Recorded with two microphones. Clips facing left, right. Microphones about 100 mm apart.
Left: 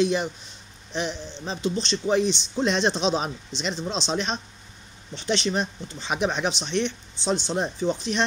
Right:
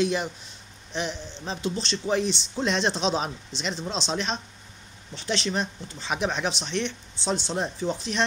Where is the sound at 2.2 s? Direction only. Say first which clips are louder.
Left 3 dB; 45° right (ahead or behind).